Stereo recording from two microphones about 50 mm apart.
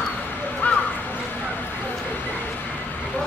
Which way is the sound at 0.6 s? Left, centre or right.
Left.